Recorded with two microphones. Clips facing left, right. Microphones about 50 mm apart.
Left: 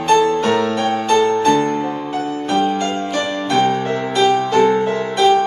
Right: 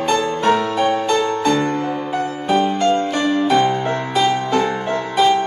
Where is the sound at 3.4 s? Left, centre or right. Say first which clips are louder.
Left 3 dB; centre.